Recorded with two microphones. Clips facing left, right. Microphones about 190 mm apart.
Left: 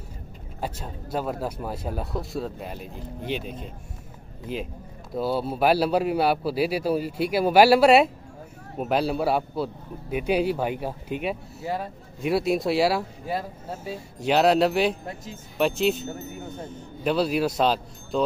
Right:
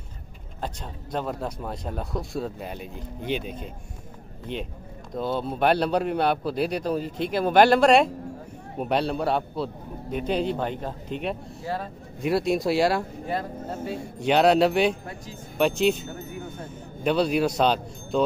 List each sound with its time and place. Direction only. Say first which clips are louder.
0.6 s speech: left 2 dB; 5° left (ahead or behind)
12.2 s speech: even; centre (ahead or behind)